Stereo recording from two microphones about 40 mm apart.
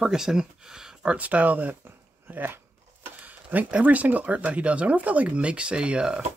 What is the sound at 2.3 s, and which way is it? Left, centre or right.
Speech, right.